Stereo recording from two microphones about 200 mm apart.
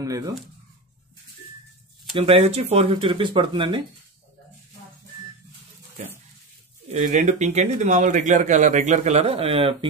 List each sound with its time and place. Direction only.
2.1 s speech: 30° right (ahead or behind)
6.9 s speech: 35° right (ahead or behind)